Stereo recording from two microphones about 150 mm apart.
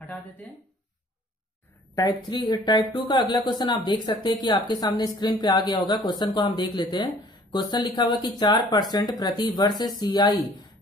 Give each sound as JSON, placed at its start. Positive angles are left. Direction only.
{"t": 2.0, "sound": "speech", "side_deg": 25}